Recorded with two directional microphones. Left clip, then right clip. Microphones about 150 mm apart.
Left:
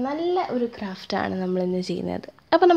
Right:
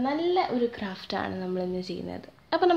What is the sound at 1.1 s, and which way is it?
Speech, 45° left (ahead or behind).